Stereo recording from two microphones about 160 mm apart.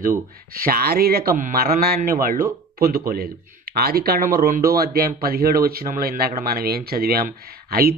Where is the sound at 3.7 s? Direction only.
70° right (ahead or behind).